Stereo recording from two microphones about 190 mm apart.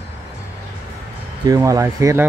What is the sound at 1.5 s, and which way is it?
Speech, 15° right (ahead or behind).